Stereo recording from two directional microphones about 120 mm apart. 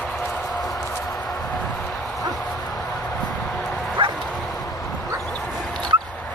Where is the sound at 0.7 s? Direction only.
30° left (ahead or behind).